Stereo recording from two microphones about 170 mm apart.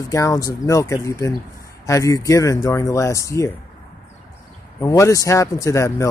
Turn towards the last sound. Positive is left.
turn(degrees=15)  # may be behind; listen again after turning